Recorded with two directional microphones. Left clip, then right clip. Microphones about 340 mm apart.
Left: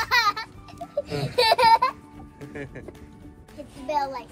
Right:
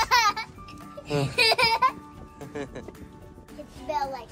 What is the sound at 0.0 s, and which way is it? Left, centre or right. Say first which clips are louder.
Music: even; centre.